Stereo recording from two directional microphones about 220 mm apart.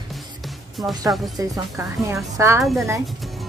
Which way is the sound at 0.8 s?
15° right (ahead or behind).